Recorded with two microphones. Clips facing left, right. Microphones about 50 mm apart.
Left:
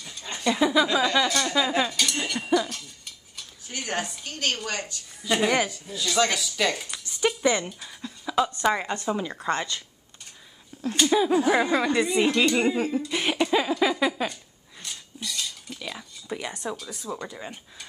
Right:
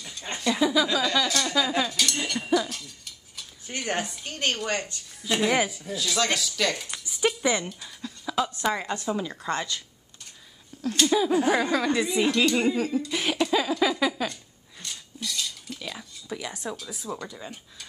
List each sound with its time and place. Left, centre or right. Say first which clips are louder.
0.4 s speech: left 2 dB; centre
3.7 s a woman's voice: right 1 dB; centre
5.2 s speech: left 2 dB; centre
5.5 s speech: even; centre
6.9 s a sound: even; centre
8.6 s speech: left 2 dB; centre
10.9 s speech: left 1 dB; centre
12.4 s a sound: left 1 dB; centre
16.5 s speech: left 2 dB; centre
17.2 s speech: left 2 dB; centre